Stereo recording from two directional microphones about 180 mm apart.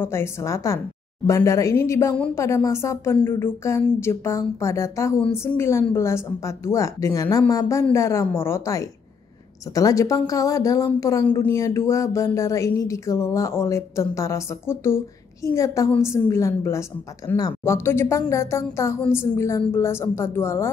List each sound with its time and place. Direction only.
0.0 s a woman's voice: 15° left (ahead or behind)